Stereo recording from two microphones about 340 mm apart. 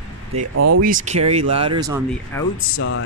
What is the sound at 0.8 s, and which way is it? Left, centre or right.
Speech, right.